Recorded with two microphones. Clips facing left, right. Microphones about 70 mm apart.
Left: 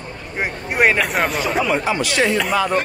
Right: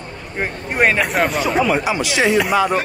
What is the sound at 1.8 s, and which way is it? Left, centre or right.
Speech, centre.